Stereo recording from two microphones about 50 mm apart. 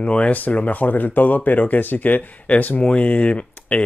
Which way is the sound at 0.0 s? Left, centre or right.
Left.